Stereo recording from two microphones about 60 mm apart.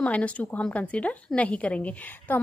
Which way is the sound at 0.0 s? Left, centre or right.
Left.